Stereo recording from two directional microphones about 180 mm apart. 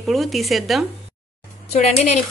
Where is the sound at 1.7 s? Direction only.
40° left (ahead or behind).